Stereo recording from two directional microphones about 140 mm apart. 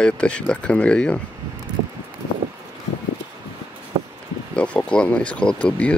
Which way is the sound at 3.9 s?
40° right (ahead or behind).